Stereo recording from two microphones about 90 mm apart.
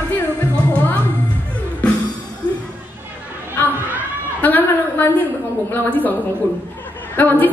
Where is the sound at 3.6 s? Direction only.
20° left (ahead or behind).